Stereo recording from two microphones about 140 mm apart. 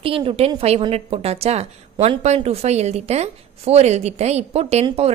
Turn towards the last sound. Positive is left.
turn(degrees=-45)  # may be behind; listen again after turning